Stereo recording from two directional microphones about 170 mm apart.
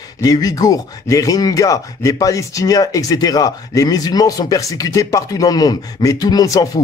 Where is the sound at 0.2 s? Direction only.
20° left (ahead or behind).